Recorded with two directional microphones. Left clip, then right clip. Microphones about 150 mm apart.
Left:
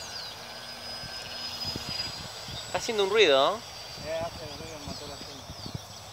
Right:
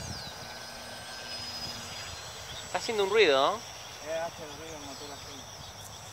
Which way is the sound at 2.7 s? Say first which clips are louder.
Left 1 dB; 70° left (ahead or behind).